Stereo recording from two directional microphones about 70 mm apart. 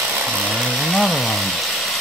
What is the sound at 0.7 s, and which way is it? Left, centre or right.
Chainsaw, centre.